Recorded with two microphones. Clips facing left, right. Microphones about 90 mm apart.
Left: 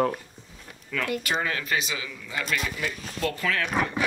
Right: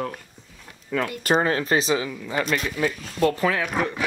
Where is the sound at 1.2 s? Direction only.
40° right (ahead or behind).